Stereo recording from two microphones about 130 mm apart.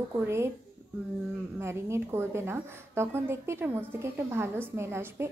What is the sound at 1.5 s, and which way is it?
A woman's voice, 20° right (ahead or behind).